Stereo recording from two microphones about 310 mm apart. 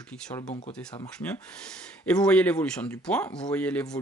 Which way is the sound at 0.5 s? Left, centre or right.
Left.